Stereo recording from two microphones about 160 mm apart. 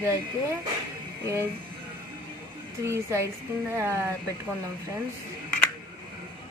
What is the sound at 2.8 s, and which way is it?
Speech, 15° right (ahead or behind).